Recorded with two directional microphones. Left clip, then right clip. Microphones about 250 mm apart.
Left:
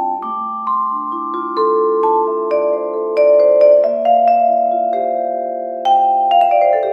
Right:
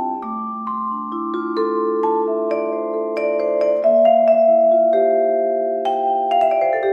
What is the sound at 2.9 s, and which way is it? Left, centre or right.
Music, left.